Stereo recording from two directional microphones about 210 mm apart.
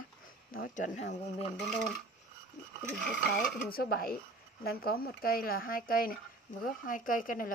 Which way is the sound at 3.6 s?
45° left (ahead or behind).